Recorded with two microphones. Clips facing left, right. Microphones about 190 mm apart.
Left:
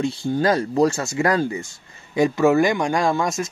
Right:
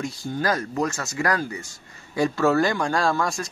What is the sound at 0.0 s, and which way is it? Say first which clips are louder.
Speech: left 6 dB; 30° left (ahead or behind).